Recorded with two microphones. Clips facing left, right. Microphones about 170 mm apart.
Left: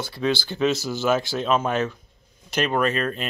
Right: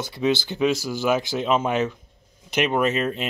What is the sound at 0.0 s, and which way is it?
Speech, 20° right (ahead or behind).